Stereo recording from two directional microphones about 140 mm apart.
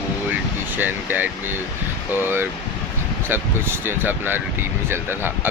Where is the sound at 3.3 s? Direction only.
15° right (ahead or behind).